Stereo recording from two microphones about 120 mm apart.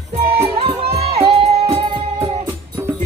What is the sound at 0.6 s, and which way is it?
Music, 55° right (ahead or behind).